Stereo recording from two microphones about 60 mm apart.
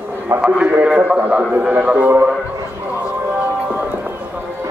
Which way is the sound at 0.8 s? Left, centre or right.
Centre.